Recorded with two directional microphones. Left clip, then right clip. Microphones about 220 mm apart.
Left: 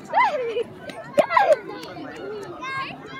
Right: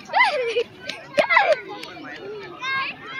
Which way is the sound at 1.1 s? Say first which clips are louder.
Right 1 dB; 5° left (ahead or behind).